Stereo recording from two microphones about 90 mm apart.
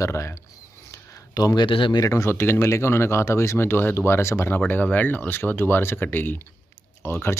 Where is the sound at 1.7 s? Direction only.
70° left (ahead or behind).